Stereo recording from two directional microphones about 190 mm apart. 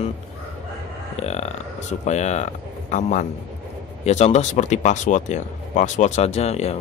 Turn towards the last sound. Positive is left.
turn(degrees=35)  # may be behind; listen again after turning